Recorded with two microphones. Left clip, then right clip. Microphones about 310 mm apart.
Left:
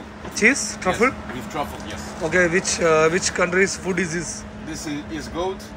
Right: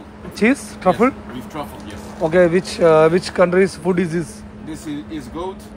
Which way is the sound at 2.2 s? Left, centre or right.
Centre.